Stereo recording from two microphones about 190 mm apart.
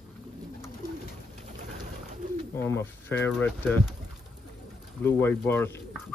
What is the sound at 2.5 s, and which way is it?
Speech, 15° left (ahead or behind).